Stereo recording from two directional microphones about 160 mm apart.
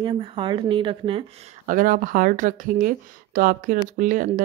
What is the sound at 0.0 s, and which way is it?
Speech, 35° right (ahead or behind).